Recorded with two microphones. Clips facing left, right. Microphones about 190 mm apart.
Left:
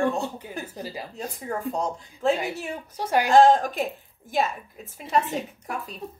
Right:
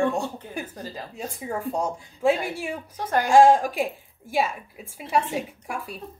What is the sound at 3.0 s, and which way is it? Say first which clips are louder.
Speech: left 1 dB; 10° left (ahead or behind).